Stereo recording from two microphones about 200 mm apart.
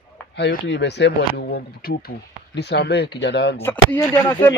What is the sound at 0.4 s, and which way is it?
Speech, 60° left (ahead or behind).